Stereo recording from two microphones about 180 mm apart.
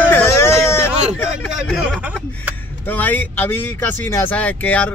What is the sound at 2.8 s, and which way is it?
Speech, 10° left (ahead or behind).